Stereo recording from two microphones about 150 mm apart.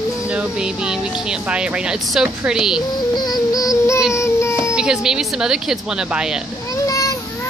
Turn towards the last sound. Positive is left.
turn(degrees=25)  # may be behind; listen again after turning